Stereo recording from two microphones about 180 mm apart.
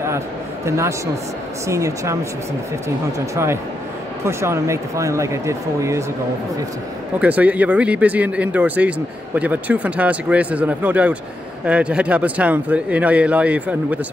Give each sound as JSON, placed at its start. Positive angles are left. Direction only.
{"t": 0.7, "sound": "speech", "side_deg": -15}
{"t": 4.2, "sound": "speech", "side_deg": -15}
{"t": 7.2, "sound": "speech", "side_deg": -10}